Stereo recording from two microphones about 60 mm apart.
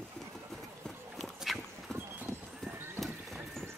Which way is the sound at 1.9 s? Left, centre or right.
Right.